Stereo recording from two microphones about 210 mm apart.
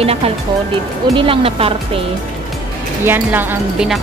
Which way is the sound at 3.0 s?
10° right (ahead or behind).